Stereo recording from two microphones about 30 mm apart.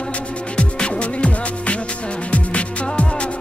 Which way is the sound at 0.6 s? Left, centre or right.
Left.